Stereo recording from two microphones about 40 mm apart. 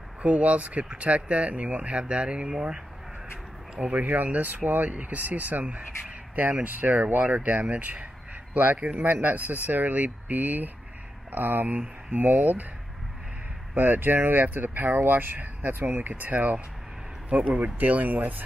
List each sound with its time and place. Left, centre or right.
0.2 s speech: right
3.7 s speech: right
4.1 s speech: right
13.7 s speech: right
15.0 s speech: right
15.3 s speech: right